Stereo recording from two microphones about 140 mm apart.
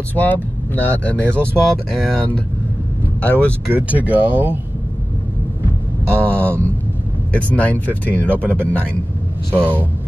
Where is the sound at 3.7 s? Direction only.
10° right (ahead or behind).